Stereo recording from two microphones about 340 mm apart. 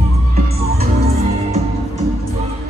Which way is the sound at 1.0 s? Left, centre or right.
Centre.